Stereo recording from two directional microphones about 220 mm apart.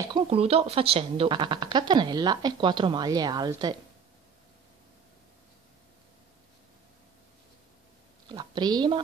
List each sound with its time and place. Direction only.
0.0 s speech: 25° right (ahead or behind)
8.3 s speech: 20° right (ahead or behind)